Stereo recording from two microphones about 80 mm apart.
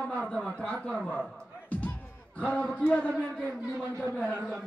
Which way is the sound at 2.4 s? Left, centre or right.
Centre.